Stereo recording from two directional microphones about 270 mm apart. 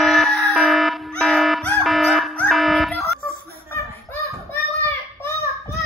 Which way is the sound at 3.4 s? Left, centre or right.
Centre.